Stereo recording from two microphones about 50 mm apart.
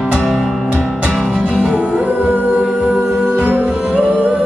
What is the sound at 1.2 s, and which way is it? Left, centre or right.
Music, right.